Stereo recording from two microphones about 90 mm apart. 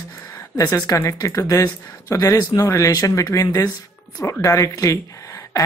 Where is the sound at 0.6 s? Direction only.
40° left (ahead or behind).